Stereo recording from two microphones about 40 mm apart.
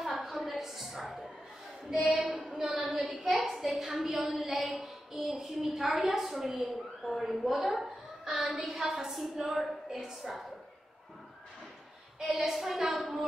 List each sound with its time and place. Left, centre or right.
0.0 s a sound: centre
2.1 s a woman's voice: right
2.9 s a woman's voice: centre
12.5 s a woman's voice: centre